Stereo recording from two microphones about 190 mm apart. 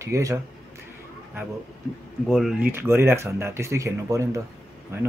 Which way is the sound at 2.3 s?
Centre (ahead or behind).